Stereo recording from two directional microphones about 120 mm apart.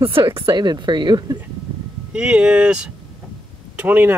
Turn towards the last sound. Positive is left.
turn(degrees=-15)  # may be behind; listen again after turning